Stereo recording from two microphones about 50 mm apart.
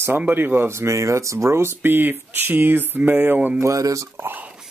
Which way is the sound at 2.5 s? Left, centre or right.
Right.